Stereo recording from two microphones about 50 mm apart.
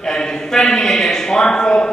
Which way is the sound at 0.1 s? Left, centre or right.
Centre.